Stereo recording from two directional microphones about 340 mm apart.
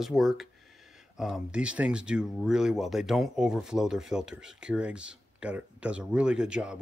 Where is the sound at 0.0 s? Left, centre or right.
Centre.